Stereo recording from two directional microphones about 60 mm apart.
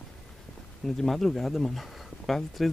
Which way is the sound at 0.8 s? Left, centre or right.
Centre.